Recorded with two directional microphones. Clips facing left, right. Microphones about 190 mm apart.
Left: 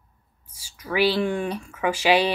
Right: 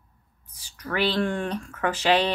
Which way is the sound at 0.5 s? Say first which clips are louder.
Left 4 dB; 10° left (ahead or behind).